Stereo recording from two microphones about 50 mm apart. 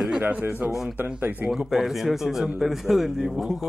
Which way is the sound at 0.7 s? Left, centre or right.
Centre.